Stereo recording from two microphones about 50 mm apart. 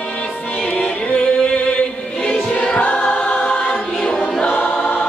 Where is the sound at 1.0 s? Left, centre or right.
Left.